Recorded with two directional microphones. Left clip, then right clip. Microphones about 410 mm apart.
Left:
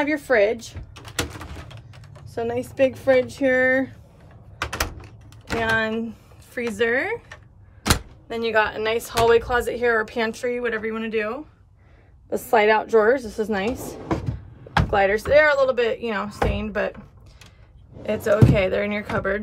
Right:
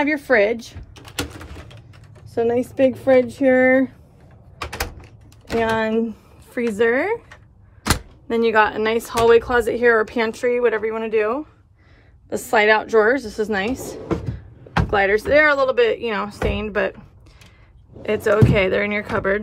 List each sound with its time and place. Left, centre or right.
0.0 s speech: centre
0.9 s a sound: centre
2.3 s speech: centre
5.6 s speech: centre
8.3 s a woman's voice: centre
18.0 s speech: centre